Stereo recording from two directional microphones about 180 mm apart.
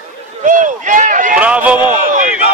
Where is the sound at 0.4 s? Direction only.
45° right (ahead or behind).